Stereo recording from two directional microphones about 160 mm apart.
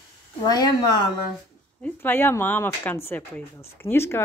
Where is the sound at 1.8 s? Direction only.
10° left (ahead or behind).